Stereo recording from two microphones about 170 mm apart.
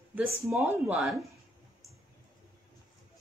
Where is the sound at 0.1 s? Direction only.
10° right (ahead or behind).